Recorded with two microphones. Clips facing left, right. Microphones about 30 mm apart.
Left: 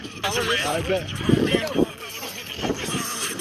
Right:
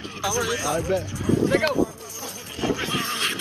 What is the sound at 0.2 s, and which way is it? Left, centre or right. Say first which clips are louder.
Speech: left 2 dB; left.